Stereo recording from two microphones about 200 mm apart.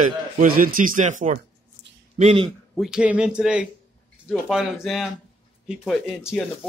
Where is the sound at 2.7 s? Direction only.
5° right (ahead or behind).